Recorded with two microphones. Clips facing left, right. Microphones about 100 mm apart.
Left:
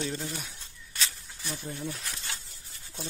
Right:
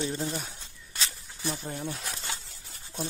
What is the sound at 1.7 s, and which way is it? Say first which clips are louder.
Speech: right 1 dB; 35° right (ahead or behind).